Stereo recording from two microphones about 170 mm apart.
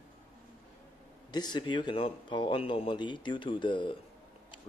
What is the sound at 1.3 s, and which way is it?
A man's voice, 25° left (ahead or behind).